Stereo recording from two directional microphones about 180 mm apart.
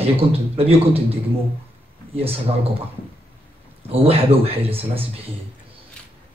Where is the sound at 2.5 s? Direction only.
35° right (ahead or behind).